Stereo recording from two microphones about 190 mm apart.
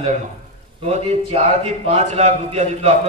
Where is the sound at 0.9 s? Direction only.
35° right (ahead or behind).